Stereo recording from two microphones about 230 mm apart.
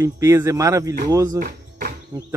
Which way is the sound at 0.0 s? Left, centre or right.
Centre.